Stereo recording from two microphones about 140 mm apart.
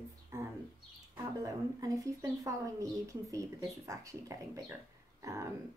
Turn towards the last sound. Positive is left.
turn(degrees=-20)  # may be behind; listen again after turning